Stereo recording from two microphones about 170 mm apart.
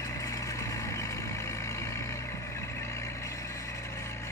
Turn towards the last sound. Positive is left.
turn(degrees=15)  # may be behind; listen again after turning